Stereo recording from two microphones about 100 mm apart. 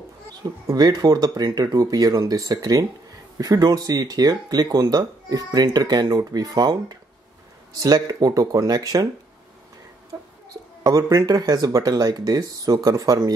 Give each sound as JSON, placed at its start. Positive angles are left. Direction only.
{"t": 0.4, "sound": "speech", "side_deg": -40}
{"t": 10.8, "sound": "speech", "side_deg": -30}